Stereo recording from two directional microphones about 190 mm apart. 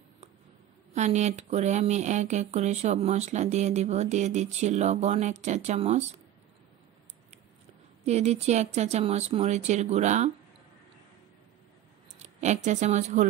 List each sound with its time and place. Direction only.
0.9 s speech: 40° right (ahead or behind)
8.0 s speech: 35° right (ahead or behind)
12.2 s a woman's voice: 35° right (ahead or behind)